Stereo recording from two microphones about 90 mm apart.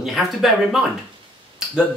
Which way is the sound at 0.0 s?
Centre (ahead or behind).